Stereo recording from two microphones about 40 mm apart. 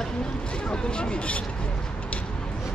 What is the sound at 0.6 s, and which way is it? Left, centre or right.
Speech, left.